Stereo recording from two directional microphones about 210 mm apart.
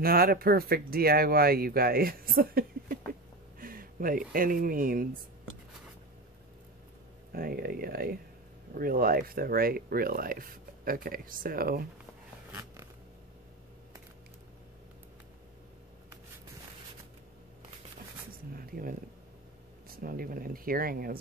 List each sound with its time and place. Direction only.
0.0 s speech: 45° right (ahead or behind)
3.1 s a sound: 45° right (ahead or behind)
4.3 s speech: 40° right (ahead or behind)
7.3 s speech: 45° right (ahead or behind)
18.5 s a sound: 45° right (ahead or behind)
20.0 s speech: 45° right (ahead or behind)